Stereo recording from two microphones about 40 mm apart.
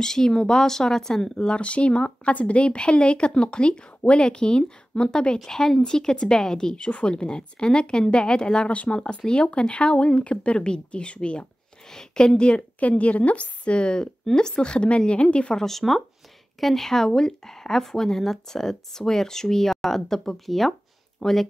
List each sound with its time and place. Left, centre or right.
0.0 s speech: centre
1.5 s speech: left
5.4 s speech: centre
11.9 s speech: centre
12.4 s speech: left
15.5 s speech: centre